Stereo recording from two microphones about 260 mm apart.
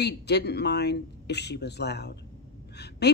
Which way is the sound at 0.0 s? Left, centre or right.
Left.